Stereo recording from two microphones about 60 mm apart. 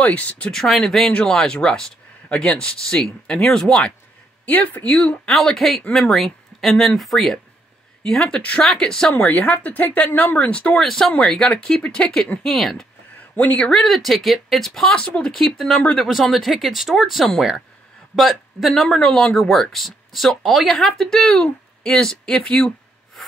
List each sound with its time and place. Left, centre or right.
0.0 s speech: left
0.5 s speech: centre
4.5 s speech: left
5.2 s speech: centre
9.3 s speech: left
10.8 s speech: centre
12.4 s speech: centre
13.4 s speech: left
13.7 s speech: centre